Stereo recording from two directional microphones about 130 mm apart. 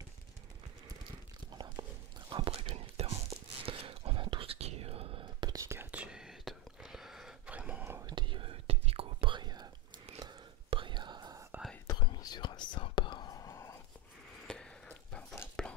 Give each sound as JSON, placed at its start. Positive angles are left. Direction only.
{"t": 1.6, "sound": "whispering", "side_deg": -35}
{"t": 5.5, "sound": "whispering", "side_deg": -20}
{"t": 8.1, "sound": "whispering", "side_deg": -40}
{"t": 10.7, "sound": "whispering", "side_deg": -40}
{"t": 11.9, "sound": "whispering", "side_deg": 30}
{"t": 14.5, "sound": "a sound", "side_deg": 5}